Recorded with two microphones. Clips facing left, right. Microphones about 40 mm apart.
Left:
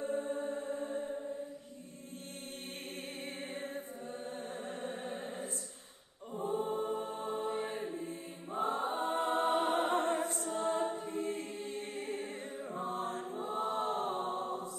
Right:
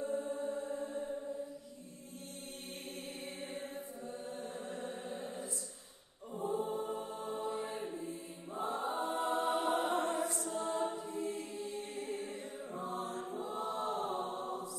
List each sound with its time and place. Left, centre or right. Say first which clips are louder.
0.0 s music: left 1 dB; left
1.0 s mantra: left 1 dB; left
3.3 s music: left 3 dB; left
6.3 s choir: left 2 dB; left